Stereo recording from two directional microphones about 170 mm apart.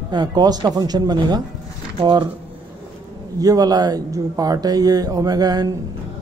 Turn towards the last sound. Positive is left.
turn(degrees=-20)  # may be behind; listen again after turning